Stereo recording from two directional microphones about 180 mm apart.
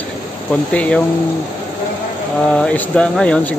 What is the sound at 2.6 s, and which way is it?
Speech, 5° left (ahead or behind).